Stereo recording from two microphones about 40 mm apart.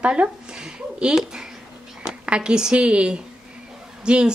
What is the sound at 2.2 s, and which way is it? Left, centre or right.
A woman's voice, right.